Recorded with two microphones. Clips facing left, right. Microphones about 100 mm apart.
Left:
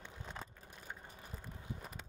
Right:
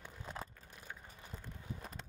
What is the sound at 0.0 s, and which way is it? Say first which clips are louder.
Vehicle: right 2 dB; 10° right (ahead or behind).